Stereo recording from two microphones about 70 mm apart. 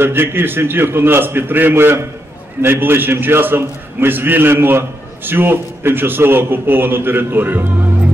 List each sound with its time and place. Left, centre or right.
0.0 s a man's voice: right